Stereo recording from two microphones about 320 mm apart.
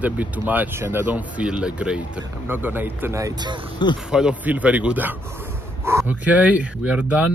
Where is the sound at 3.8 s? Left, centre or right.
Centre.